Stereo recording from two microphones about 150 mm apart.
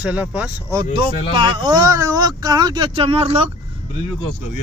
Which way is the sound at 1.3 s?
30° right (ahead or behind).